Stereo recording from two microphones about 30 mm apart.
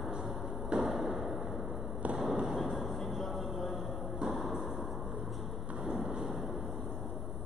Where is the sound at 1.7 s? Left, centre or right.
Centre.